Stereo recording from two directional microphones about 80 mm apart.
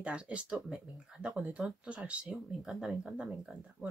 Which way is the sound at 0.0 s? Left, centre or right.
Centre.